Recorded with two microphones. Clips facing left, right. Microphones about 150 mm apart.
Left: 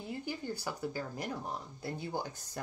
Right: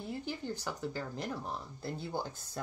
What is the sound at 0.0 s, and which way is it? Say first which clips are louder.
Speech: even; 10° left (ahead or behind).